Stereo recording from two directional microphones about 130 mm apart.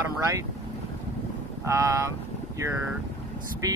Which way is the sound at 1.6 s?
25° right (ahead or behind).